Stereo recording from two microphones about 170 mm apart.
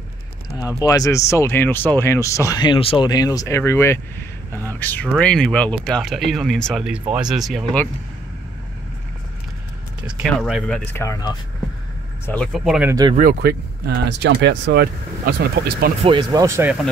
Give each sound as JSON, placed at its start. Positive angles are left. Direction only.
{"t": 0.8, "sound": "speech", "side_deg": 20}
{"t": 10.0, "sound": "speech", "side_deg": 0}
{"t": 10.9, "sound": "speech", "side_deg": 15}
{"t": 12.3, "sound": "speech", "side_deg": 5}
{"t": 13.1, "sound": "speech", "side_deg": -55}
{"t": 16.0, "sound": "speech", "side_deg": -30}
{"t": 16.4, "sound": "speech", "side_deg": -15}